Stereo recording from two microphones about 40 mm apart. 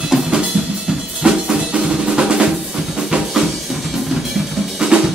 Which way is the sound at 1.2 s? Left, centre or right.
Right.